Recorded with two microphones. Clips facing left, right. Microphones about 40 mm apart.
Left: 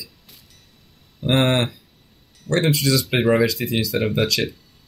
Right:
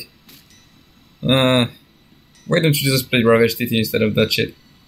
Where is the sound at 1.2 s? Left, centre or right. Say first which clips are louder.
Right 3 dB; centre.